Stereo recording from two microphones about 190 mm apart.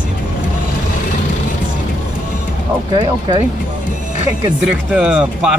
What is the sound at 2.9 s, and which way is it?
Speech, 25° right (ahead or behind).